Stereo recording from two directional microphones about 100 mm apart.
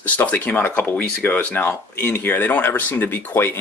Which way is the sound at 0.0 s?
15° left (ahead or behind).